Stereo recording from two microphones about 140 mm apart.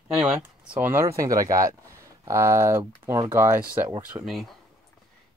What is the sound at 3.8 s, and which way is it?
Speech, 30° right (ahead or behind).